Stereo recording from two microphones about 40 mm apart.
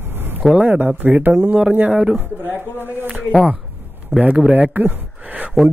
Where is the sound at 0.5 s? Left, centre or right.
Right.